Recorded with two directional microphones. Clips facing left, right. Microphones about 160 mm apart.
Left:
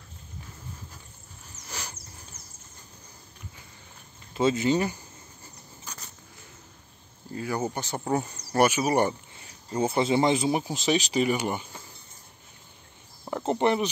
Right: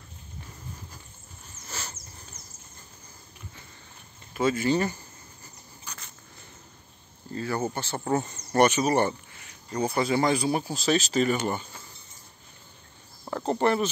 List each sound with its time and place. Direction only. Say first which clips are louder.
1.7 s a sound: even; 10° left (ahead or behind)
4.3 s speech: left 1 dB; 25° left (ahead or behind)
7.3 s speech: even; 10° left (ahead or behind)
9.4 s speech: left 2 dB; 25° left (ahead or behind)
13.3 s cricket: even; 20° left (ahead or behind)